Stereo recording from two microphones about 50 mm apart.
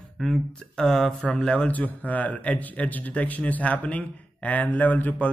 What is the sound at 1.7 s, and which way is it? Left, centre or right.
Speech, left.